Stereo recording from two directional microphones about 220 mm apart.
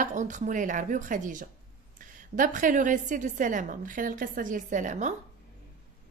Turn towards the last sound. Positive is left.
turn(degrees=-35)  # may be behind; listen again after turning